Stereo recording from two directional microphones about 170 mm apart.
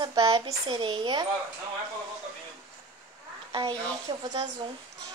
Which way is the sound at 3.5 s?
25° right (ahead or behind).